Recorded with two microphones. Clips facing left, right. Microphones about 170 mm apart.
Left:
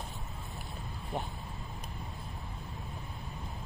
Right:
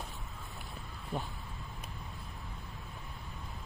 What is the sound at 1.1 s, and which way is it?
Speech, 20° left (ahead or behind).